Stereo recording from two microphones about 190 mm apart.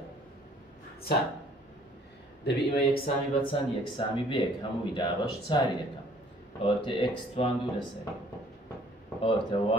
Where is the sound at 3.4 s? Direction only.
25° left (ahead or behind).